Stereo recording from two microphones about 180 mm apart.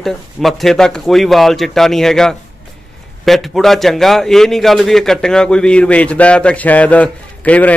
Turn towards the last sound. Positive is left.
turn(degrees=10)  # may be behind; listen again after turning